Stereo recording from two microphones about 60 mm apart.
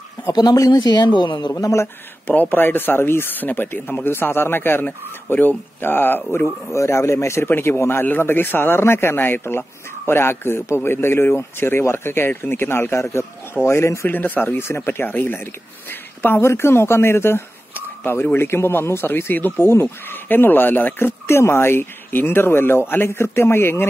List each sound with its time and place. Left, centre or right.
0.5 s speech: left
1.5 s speech: left
2.5 s speech: left
6.3 s a man's voice: left
7.4 s speech: left
14.0 s speech: left
21.3 s speech: left